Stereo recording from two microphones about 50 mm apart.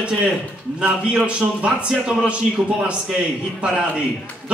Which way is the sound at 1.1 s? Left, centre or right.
Right.